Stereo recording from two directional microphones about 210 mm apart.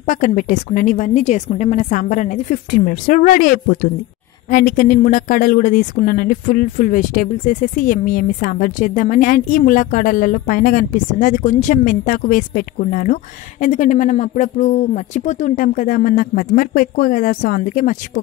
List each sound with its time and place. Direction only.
0.0 s a woman's voice: 40° left (ahead or behind)